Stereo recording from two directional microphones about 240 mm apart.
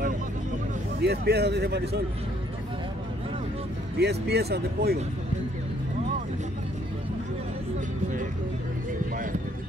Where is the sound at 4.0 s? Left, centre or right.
Right.